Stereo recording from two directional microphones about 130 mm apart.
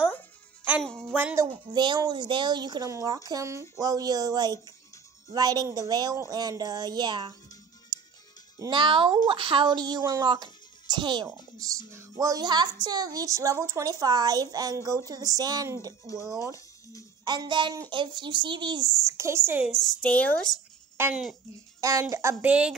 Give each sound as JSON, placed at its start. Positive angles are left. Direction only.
{"t": 0.8, "sound": "speech", "side_deg": 5}
{"t": 1.1, "sound": "a woman's voice", "side_deg": -20}
{"t": 1.5, "sound": "a woman's voice", "side_deg": -35}
{"t": 7.9, "sound": "music", "side_deg": -30}
{"t": 8.5, "sound": "a woman's voice", "side_deg": -35}
{"t": 19.0, "sound": "a woman's voice", "side_deg": -20}
{"t": 19.6, "sound": "speech", "side_deg": 0}
{"t": 21.1, "sound": "speech", "side_deg": 0}
{"t": 21.8, "sound": "a woman's voice", "side_deg": -25}